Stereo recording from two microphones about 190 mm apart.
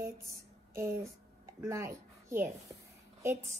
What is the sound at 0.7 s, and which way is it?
A child's voice, 15° right (ahead or behind).